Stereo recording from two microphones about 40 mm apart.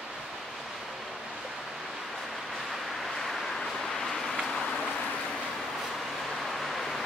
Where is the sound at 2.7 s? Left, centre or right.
Centre.